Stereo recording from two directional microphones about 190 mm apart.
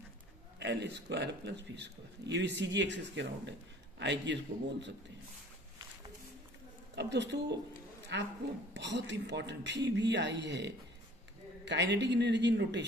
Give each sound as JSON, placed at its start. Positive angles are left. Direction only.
{"t": 0.6, "sound": "a man's voice", "side_deg": -65}
{"t": 7.0, "sound": "a man's voice", "side_deg": -65}